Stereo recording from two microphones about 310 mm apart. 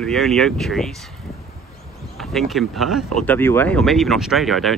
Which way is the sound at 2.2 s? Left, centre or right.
Centre.